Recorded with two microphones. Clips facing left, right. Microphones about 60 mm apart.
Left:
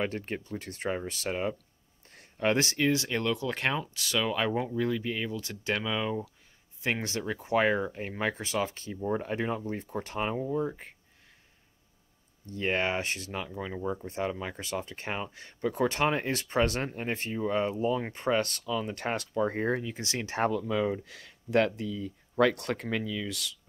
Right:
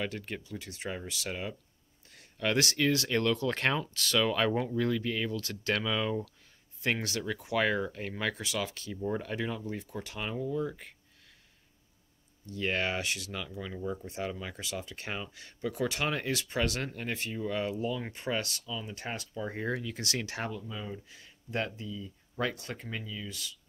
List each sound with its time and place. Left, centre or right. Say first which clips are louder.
0.0 s speech: left 4 dB; left; by 7.1 s centre
7.1 s speech: left 3 dB; left
8.9 s speech: left 2 dB; centre
9.2 s speech: left 4 dB; left
12.4 s speech: left 3 dB; left
20.5 s speech: left 11 dB; left